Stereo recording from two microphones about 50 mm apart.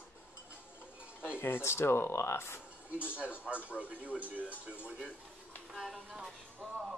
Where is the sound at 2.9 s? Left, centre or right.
Left.